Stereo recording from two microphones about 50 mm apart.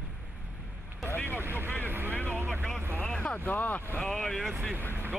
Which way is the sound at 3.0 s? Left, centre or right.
Left.